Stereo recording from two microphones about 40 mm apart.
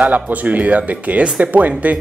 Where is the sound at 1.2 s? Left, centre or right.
Right.